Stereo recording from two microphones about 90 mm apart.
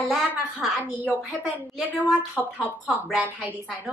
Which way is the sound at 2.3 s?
15° right (ahead or behind).